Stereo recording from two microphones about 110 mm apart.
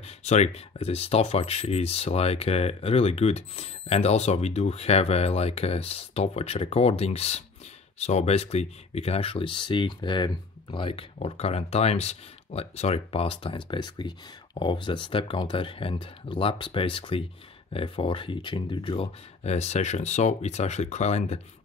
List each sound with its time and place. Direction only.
0.0 s speech: 90° left; by 7.4 s 70° left (ahead or behind)
8.0 s speech: 85° left; by 11.1 s 50° left (ahead or behind)
11.1 s speech: 65° left (ahead or behind); by 19.0 s 50° left (ahead or behind)
19.4 s speech: 85° left